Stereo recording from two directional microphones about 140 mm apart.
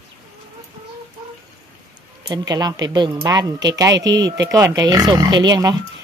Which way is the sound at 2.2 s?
30° right (ahead or behind).